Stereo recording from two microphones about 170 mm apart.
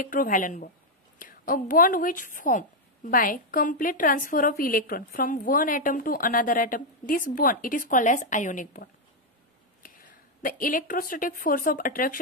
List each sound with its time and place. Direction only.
0.0 s a woman's voice: 55° left (ahead or behind)
9.8 s speech: 55° left (ahead or behind)